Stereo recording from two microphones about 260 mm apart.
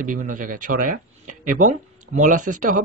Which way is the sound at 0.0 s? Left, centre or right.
Right.